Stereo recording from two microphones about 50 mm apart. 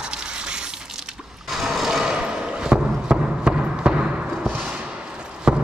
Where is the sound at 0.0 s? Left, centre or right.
Centre.